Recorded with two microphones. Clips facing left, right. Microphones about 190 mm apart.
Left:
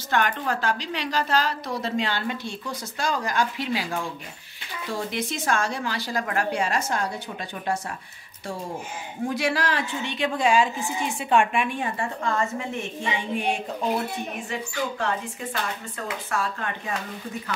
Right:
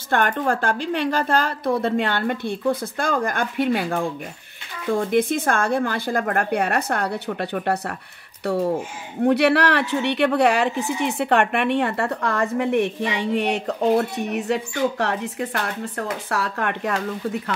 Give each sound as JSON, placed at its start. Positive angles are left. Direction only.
{"t": 0.1, "sound": "a woman's voice", "side_deg": -50}
{"t": 9.2, "sound": "a woman's voice", "side_deg": -65}